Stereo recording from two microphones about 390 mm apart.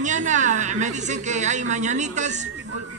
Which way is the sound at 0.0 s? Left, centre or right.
Centre.